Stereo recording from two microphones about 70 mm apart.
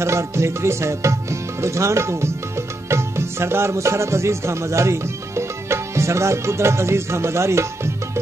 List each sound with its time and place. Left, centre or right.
0.0 s tabla: right